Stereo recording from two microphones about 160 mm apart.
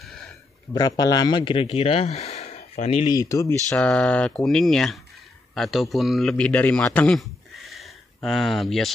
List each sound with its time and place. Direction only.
0.0 s a sound: 5° left (ahead or behind)
0.7 s speech: 25° left (ahead or behind); by 3.1 s 40° left (ahead or behind)
3.1 s speech: 20° left (ahead or behind)
3.6 s a man's voice: 10° left (ahead or behind)